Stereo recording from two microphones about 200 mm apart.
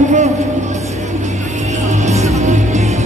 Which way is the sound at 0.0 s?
35° right (ahead or behind).